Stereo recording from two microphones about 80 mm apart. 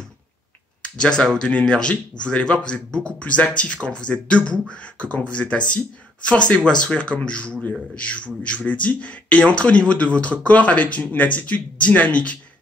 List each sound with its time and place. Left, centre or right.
0.8 s speech: centre